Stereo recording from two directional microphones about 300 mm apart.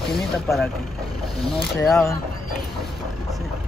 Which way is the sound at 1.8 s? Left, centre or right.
Centre.